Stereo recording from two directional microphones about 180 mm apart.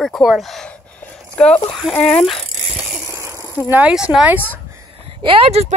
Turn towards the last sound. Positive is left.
turn(degrees=-35)  # may be behind; listen again after turning